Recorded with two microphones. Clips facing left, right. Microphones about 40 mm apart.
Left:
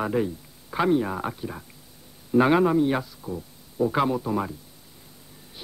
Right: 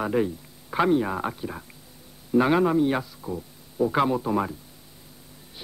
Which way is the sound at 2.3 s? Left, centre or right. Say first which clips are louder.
Left 1 dB; centre.